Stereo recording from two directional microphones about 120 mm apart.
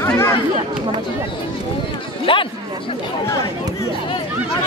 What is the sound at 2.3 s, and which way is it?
Chatter, 45° left (ahead or behind).